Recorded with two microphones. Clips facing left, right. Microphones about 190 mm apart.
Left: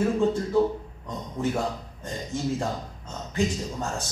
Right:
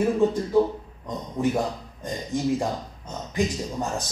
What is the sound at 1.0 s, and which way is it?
Speech, 15° right (ahead or behind).